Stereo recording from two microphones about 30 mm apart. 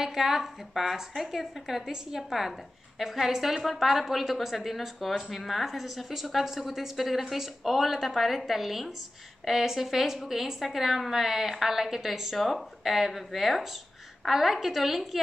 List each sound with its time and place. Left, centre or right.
0.0 s a woman's voice: centre
12.4 s a woman's voice: centre